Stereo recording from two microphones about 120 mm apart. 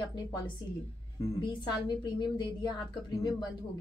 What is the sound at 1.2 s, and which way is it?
A woman's voice, 40° left (ahead or behind).